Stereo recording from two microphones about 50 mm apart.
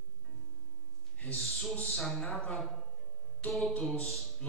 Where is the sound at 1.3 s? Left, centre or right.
Centre.